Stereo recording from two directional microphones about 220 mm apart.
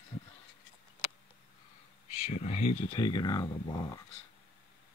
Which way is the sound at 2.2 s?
30° left (ahead or behind).